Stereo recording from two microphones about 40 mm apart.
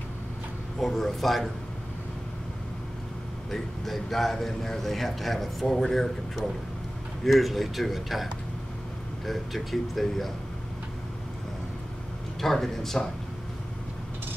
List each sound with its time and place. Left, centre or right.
0.7 s a man's voice: centre
3.4 s a man's voice: centre
12.4 s a man's voice: centre